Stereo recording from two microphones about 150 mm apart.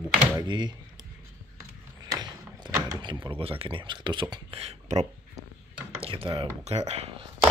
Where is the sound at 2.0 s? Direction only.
30° right (ahead or behind).